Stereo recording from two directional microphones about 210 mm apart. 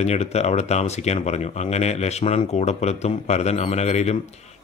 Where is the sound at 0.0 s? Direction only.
30° left (ahead or behind).